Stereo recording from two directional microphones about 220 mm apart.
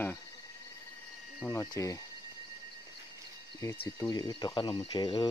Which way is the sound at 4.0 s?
20° left (ahead or behind).